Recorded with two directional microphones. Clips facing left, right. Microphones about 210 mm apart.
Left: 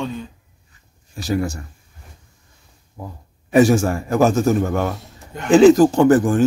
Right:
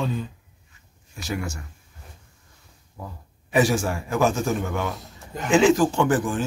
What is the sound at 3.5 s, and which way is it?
A man's voice, 45° left (ahead or behind).